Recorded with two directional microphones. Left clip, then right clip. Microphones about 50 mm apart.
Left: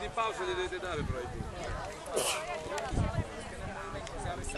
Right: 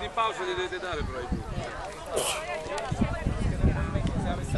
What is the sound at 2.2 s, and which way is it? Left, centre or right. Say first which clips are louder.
Speech: right 3 dB; left.